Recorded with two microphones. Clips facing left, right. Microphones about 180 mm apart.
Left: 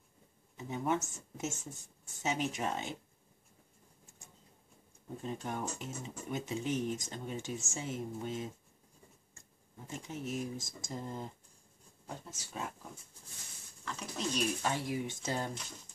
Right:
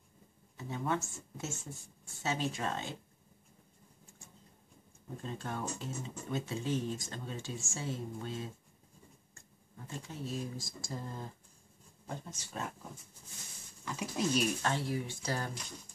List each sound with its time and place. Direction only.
0.6 s speech: 15° left (ahead or behind)
5.2 s speech: 15° left (ahead or behind)
9.8 s speech: 20° left (ahead or behind)
12.3 s speech: 5° left (ahead or behind)
13.8 s speech: 10° right (ahead or behind)
14.6 s speech: 15° left (ahead or behind)